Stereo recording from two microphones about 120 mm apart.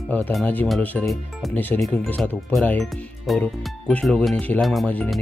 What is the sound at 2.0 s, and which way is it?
Speech, 15° left (ahead or behind).